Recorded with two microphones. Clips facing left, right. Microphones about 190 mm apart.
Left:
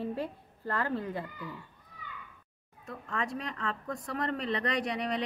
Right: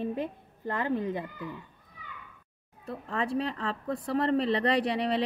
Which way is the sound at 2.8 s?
35° right (ahead or behind).